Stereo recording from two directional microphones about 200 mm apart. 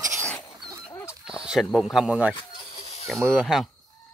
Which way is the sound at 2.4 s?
30° left (ahead or behind).